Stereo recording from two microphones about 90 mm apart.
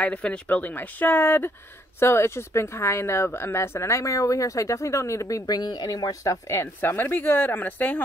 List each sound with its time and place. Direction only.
0.0 s speech: 10° left (ahead or behind)